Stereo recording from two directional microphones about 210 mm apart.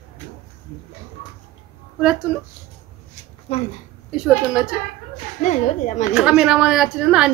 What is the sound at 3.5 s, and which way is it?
Speech, 25° left (ahead or behind).